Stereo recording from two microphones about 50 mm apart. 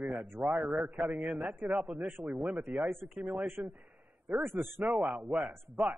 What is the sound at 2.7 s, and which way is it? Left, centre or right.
A man's voice, right.